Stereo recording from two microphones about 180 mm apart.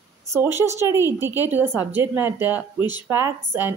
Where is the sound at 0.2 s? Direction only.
15° right (ahead or behind).